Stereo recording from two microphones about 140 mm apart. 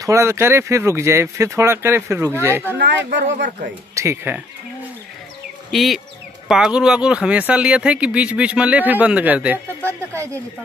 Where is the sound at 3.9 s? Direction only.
20° right (ahead or behind).